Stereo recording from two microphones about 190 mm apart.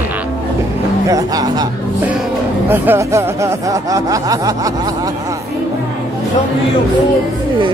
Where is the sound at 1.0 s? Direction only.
20° right (ahead or behind).